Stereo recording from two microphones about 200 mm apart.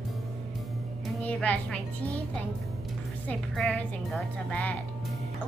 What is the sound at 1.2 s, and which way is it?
Speech, 5° left (ahead or behind).